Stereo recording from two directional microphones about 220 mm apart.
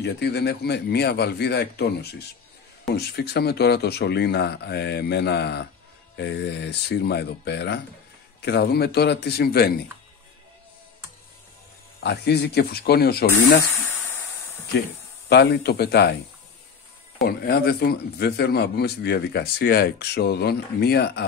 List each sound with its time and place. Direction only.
0.0 s a man's voice: 50° left (ahead or behind)
12.0 s a man's voice: 50° left (ahead or behind)
13.8 s a sound: 10° left (ahead or behind)
15.2 s a man's voice: 45° left (ahead or behind)
17.2 s a man's voice: 45° left (ahead or behind)